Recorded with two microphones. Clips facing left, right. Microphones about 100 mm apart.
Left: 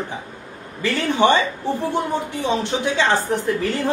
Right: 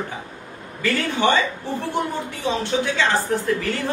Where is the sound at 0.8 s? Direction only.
20° left (ahead or behind).